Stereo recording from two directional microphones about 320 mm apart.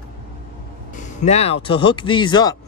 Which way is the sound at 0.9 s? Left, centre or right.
Left.